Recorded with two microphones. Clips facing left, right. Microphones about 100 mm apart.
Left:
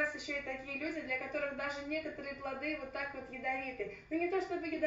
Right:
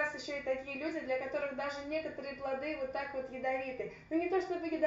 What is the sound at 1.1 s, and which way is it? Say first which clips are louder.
Speech: right 3 dB; 25° right (ahead or behind).